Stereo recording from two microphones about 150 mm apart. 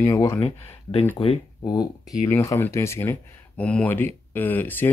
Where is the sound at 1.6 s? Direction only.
25° left (ahead or behind).